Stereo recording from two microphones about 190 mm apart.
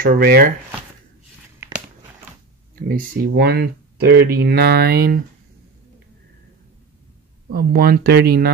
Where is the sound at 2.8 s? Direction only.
50° right (ahead or behind).